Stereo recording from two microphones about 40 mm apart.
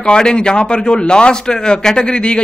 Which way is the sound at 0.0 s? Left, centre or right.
Left.